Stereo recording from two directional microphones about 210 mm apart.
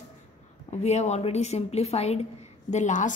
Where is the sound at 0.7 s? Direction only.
30° left (ahead or behind).